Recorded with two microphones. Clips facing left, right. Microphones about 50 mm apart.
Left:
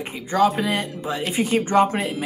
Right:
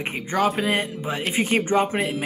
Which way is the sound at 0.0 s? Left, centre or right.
Right.